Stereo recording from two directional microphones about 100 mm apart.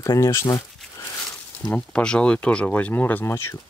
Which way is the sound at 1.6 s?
15° left (ahead or behind).